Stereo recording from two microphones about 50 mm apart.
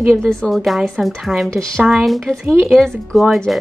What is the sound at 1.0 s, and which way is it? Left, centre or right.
Speech, right.